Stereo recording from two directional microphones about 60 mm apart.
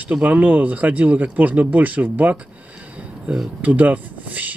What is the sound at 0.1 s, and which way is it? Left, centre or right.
Speech, right.